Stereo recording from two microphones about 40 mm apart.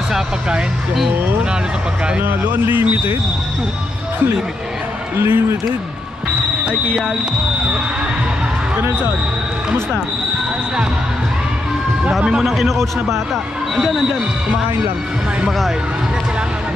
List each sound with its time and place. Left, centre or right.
5.1 s speech: right
8.7 s speech: right
12.1 s a man's voice: right
12.4 s a man's voice: centre